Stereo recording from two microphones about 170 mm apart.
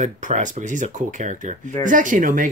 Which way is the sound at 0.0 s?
50° right (ahead or behind).